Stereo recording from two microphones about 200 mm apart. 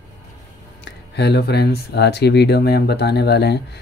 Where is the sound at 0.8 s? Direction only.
55° left (ahead or behind).